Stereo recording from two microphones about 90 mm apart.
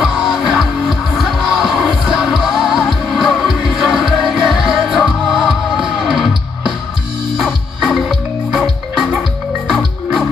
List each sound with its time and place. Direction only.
0.0 s music: 10° right (ahead or behind)
9.7 s music: centre (ahead or behind)